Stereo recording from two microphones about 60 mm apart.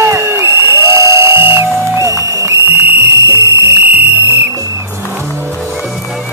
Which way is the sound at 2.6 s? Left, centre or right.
Right.